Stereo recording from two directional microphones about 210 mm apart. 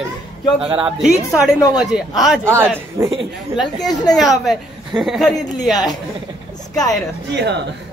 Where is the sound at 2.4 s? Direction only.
10° right (ahead or behind).